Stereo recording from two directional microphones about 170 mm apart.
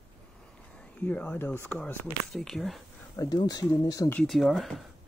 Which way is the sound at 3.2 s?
20° left (ahead or behind).